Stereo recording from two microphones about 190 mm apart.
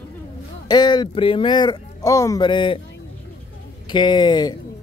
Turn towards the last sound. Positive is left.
turn(degrees=20)  # may be behind; listen again after turning